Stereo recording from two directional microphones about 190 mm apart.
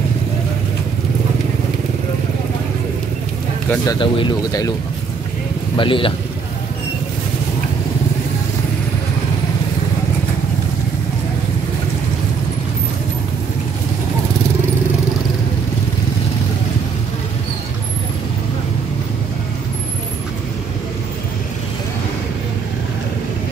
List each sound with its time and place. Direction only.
3.7 s speech: 20° left (ahead or behind)
5.8 s speech: 25° left (ahead or behind)